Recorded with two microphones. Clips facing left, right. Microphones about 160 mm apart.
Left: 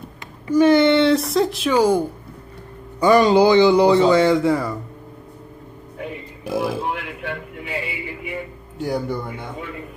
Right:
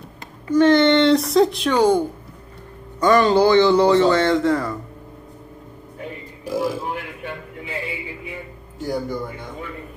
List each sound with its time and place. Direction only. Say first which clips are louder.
0.5 s speech: even; 10° left (ahead or behind)
6.4 s a sound: left 1 dB; 70° left (ahead or behind)
8.8 s music: left 1 dB; 70° left (ahead or behind)